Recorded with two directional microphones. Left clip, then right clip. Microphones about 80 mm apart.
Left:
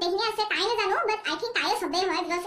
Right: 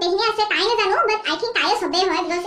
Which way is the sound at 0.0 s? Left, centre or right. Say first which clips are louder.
Right 7 dB; left.